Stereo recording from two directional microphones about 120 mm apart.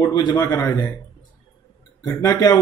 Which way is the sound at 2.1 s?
35° left (ahead or behind).